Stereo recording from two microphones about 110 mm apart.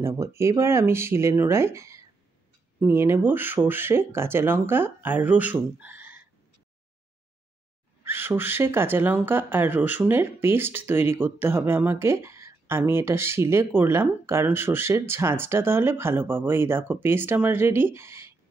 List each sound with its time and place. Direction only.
0.0 s speech: 25° right (ahead or behind)
8.0 s speech: 20° right (ahead or behind)